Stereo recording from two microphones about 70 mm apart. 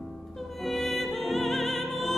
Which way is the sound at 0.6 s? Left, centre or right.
Centre.